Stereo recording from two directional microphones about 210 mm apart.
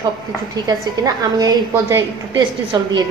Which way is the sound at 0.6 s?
20° right (ahead or behind).